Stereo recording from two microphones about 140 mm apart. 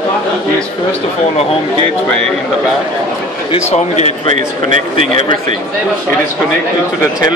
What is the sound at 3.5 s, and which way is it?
Speech, 50° left (ahead or behind).